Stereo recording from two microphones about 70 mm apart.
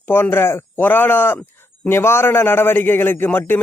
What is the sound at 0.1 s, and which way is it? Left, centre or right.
A man's voice, left.